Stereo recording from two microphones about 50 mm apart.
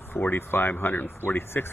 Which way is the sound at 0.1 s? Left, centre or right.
Left.